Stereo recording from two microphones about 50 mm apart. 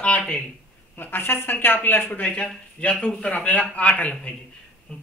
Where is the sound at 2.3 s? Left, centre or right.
Left.